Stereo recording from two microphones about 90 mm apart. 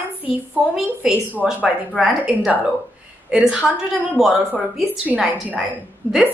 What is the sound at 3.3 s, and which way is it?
A woman's voice, 10° right (ahead or behind).